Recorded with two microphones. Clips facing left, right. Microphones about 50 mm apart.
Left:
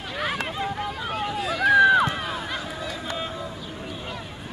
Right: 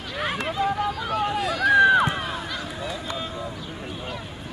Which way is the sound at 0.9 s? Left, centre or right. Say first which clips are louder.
Right 3 dB; left.